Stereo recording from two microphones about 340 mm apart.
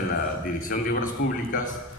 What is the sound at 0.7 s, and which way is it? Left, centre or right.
Speech, left.